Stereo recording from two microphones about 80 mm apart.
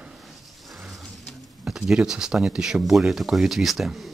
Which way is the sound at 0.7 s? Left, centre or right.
Centre.